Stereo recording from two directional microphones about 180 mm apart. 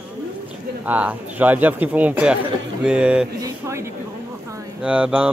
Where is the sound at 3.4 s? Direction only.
15° right (ahead or behind).